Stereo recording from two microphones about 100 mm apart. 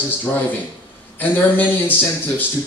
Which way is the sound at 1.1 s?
20° left (ahead or behind).